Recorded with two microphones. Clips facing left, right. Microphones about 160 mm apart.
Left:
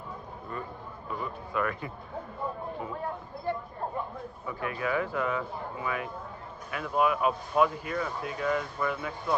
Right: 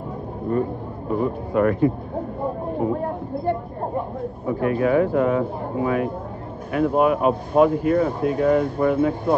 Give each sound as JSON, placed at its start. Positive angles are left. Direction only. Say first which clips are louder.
{"t": 0.5, "sound": "speech", "louder": "right 16 dB", "side_deg": -45}